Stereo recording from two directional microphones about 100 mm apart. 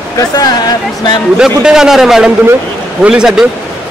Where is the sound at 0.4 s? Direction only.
40° left (ahead or behind).